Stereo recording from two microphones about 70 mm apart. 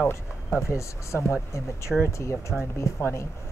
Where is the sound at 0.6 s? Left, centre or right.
Left.